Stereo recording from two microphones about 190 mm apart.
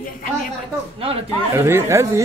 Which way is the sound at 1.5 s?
15° right (ahead or behind).